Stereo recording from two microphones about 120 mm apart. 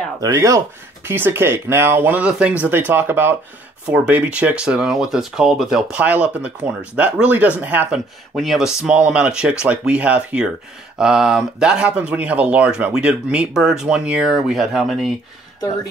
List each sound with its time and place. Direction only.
0.2 s speech: 30° right (ahead or behind)
1.0 s speech: 20° right (ahead or behind)
8.4 s speech: centre (ahead or behind)